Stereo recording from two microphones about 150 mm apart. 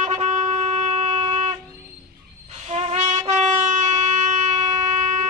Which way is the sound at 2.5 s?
45° right (ahead or behind).